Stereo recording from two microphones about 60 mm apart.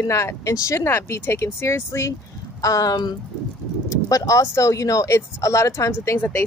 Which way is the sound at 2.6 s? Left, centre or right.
Left.